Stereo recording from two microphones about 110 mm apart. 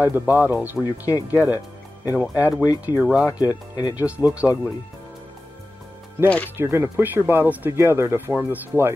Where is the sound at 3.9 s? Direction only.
10° right (ahead or behind).